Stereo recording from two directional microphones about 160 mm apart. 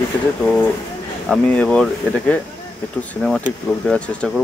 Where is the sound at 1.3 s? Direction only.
5° left (ahead or behind).